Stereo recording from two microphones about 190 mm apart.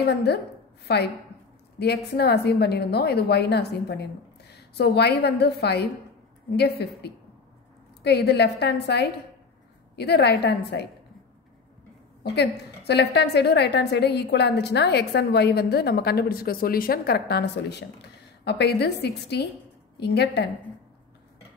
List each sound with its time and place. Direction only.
0.0 s a woman's voice: 60° left (ahead or behind)
8.0 s a woman's voice: 60° left (ahead or behind)
12.2 s a woman's voice: 60° left (ahead or behind)